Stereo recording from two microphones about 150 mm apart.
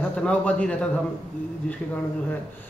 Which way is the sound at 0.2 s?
10° left (ahead or behind).